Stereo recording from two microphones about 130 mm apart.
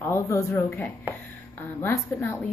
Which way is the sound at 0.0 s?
20° left (ahead or behind).